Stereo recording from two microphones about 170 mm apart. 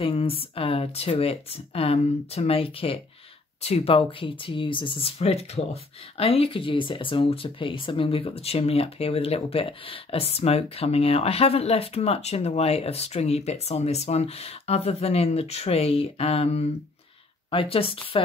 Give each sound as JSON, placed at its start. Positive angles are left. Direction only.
{"t": 0.0, "sound": "speech", "side_deg": 30}